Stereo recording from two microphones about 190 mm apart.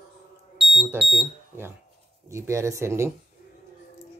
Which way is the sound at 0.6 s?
35° right (ahead or behind).